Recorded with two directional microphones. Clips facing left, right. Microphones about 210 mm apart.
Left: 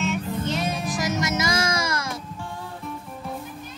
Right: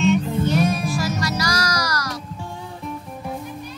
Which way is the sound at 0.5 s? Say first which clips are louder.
Right 7 dB; 20° left (ahead or behind).